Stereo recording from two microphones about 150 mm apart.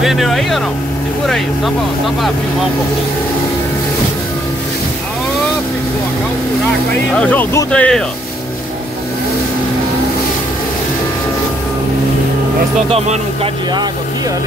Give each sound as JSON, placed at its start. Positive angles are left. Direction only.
{"t": 0.0, "sound": "speech", "side_deg": 0}
{"t": 7.1, "sound": "speech", "side_deg": 10}
{"t": 12.9, "sound": "speech", "side_deg": -45}